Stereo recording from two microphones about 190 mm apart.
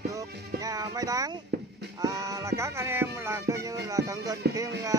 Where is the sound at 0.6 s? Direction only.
20° right (ahead or behind).